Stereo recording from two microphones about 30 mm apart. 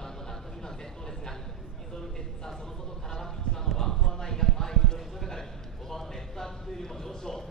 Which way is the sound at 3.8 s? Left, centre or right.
Centre.